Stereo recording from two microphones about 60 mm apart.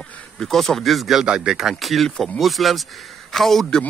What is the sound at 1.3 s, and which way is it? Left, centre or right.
Speech, centre.